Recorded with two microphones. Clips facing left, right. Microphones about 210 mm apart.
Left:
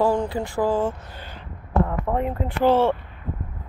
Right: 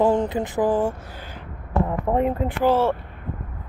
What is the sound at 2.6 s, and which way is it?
Speech, 5° right (ahead or behind).